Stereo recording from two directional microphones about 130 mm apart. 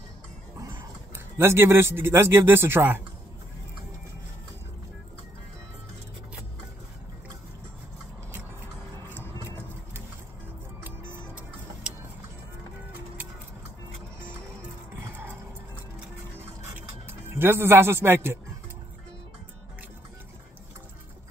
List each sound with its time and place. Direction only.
0.6 s speech: 20° right (ahead or behind)
10.8 s music: 15° right (ahead or behind)
15.0 s music: 15° right (ahead or behind)
17.3 s speech: 15° right (ahead or behind)